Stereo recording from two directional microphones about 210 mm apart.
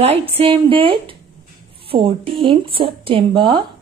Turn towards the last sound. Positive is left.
turn(degrees=-25)  # may be behind; listen again after turning